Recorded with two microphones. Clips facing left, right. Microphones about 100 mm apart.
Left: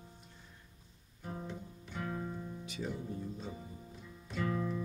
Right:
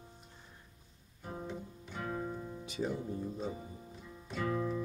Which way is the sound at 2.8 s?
30° right (ahead or behind).